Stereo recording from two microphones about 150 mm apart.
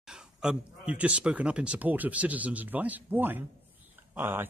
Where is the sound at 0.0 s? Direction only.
5° right (ahead or behind).